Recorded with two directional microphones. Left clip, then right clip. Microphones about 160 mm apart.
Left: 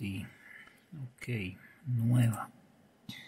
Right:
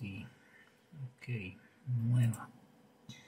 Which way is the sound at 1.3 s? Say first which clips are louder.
Left 6 dB; 60° left (ahead or behind).